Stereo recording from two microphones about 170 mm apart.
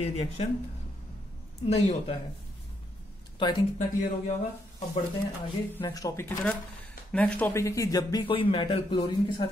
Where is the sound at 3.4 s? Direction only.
25° left (ahead or behind).